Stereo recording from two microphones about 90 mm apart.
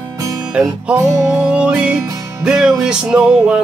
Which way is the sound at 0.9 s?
35° right (ahead or behind).